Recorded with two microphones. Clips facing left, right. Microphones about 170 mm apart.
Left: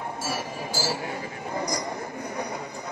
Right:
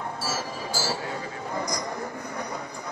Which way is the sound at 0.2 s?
15° left (ahead or behind).